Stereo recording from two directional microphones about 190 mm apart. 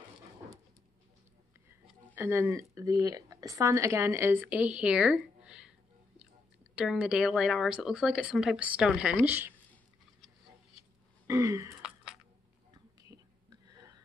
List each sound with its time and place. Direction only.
2.1 s a woman's voice: 10° right (ahead or behind)
11.2 s throat clearing: 15° right (ahead or behind)
11.8 s a sound: centre (ahead or behind)